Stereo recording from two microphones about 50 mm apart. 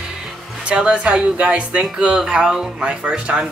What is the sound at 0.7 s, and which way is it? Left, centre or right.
Speech, right.